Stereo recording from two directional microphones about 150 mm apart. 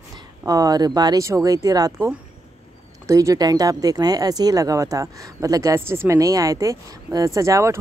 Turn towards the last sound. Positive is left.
turn(degrees=-20)  # may be behind; listen again after turning